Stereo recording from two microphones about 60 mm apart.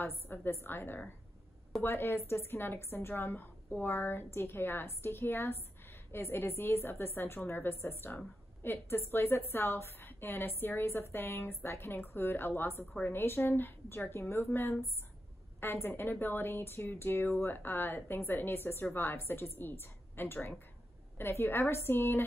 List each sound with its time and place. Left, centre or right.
0.0 s a woman's voice: left